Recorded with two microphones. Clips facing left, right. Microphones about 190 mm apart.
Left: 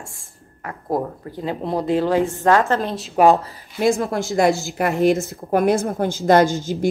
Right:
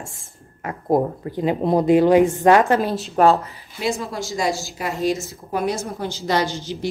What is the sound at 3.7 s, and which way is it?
A woman's voice, 50° left (ahead or behind).